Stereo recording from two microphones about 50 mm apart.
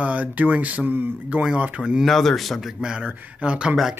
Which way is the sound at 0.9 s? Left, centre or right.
Right.